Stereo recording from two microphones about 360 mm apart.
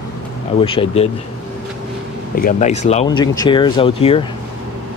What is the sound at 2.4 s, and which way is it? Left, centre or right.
Speech, left.